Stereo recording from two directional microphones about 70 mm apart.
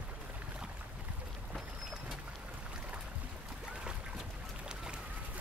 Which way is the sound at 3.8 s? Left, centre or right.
Centre.